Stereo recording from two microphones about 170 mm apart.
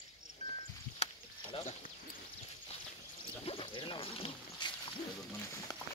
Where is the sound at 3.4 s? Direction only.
35° left (ahead or behind).